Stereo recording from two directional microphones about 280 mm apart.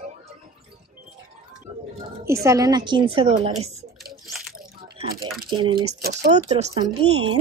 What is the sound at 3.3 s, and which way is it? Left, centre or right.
Typing, right.